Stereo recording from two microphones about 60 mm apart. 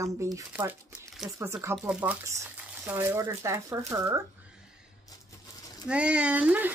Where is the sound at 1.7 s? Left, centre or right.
Right.